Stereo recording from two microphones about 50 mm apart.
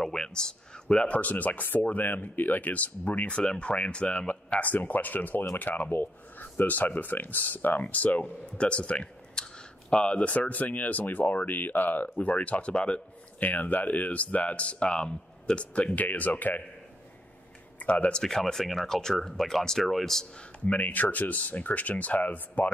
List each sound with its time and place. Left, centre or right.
0.0 s speech: centre; by 3.3 s left
3.3 s speech: left
13.4 s speech: left
17.7 s speech: left
18.2 s speech: centre
20.6 s speech: left